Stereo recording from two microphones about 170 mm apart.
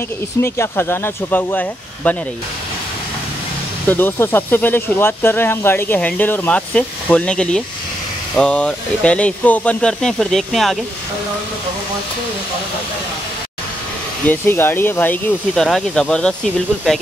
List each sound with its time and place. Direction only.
0.4 s speech: 15° left (ahead or behind)
3.9 s speech: 10° left (ahead or behind)
14.2 s speech: 10° left (ahead or behind)